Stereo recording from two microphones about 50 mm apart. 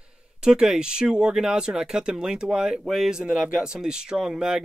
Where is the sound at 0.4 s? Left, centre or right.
Centre.